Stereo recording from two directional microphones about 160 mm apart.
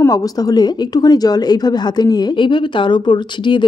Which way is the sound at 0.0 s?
20° left (ahead or behind).